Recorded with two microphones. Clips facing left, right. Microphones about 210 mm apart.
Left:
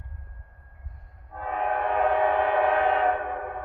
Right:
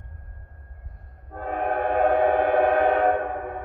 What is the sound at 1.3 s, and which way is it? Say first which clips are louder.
Train: right 3 dB; 40° right (ahead or behind).